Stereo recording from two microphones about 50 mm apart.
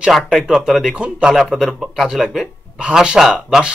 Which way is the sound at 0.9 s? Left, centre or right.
Right.